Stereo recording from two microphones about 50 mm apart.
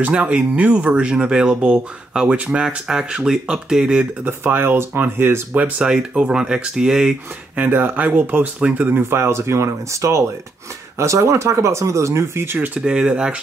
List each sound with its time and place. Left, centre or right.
0.0 s speech: right
2.6 s speech: centre
4.2 s speech: right
5.8 s speech: right
7.5 s speech: right
8.5 s speech: right
8.8 s speech: right
11.0 s speech: right
12.5 s speech: right
12.8 s speech: centre